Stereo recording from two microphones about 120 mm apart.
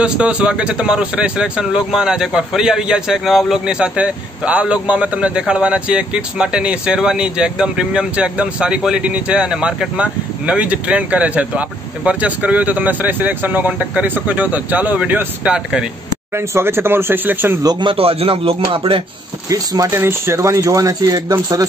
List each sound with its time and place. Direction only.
0.0 s speech: 10° right (ahead or behind)
16.3 s speech: 20° right (ahead or behind)
17.6 s a man's voice: 40° right (ahead or behind)
19.5 s speech: 30° right (ahead or behind)